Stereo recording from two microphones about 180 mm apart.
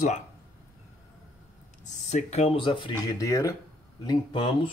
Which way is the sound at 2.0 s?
40° left (ahead or behind).